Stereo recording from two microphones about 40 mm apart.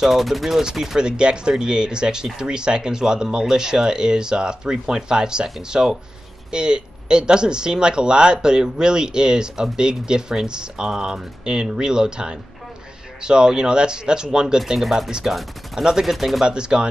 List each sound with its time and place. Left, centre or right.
0.0 s speech: centre
0.9 s speech: right
14.8 s speech: centre
16.4 s speech: right